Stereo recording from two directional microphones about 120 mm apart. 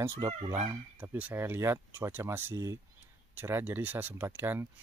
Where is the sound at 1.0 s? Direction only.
15° right (ahead or behind).